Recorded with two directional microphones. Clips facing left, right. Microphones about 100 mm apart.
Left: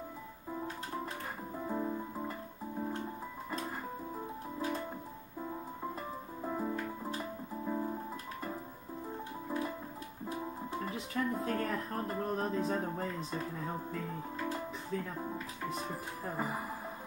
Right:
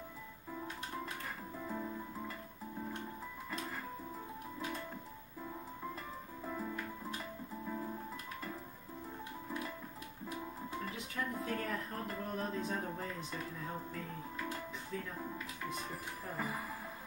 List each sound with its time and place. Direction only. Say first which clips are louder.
1.5 s music: left 7 dB; 25° left (ahead or behind)
4.6 s music: left 6 dB; 35° left (ahead or behind)
6.4 s music: left 6 dB; 30° left (ahead or behind)
9.5 s music: left 7 dB; 25° left (ahead or behind)
12.1 s speech: left 5 dB; 30° left (ahead or behind)
15.1 s speech: left 4 dB; 30° left (ahead or behind)